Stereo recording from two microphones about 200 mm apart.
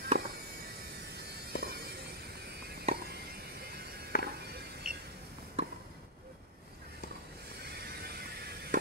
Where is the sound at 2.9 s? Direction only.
30° right (ahead or behind).